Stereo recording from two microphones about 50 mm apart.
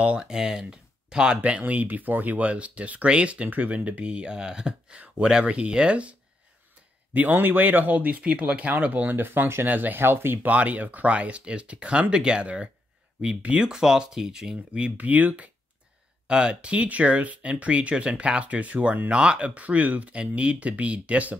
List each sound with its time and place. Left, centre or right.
0.0 s speech: right
0.3 s speech: centre
1.7 s speech: right
7.2 s speech: right
9.1 s speech: right
10.0 s speech: right
10.4 s speech: right
13.7 s speech: centre
14.7 s speech: right
16.3 s speech: centre